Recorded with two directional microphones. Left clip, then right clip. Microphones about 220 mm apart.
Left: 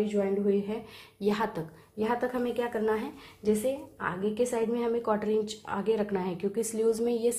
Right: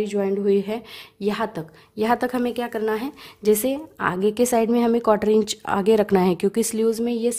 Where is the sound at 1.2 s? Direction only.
30° right (ahead or behind).